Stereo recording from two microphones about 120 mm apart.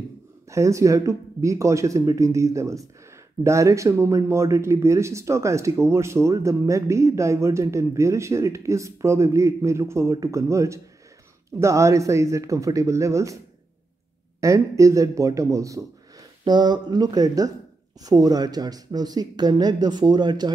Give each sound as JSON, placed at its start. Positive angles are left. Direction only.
{"t": 0.5, "sound": "speech", "side_deg": -25}
{"t": 14.4, "sound": "speech", "side_deg": -25}
{"t": 16.4, "sound": "speech", "side_deg": -35}